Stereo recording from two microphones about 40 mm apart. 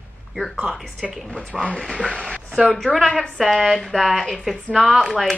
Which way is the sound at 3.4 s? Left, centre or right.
Centre.